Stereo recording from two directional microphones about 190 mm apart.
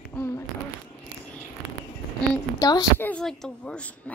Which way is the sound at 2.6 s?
20° left (ahead or behind).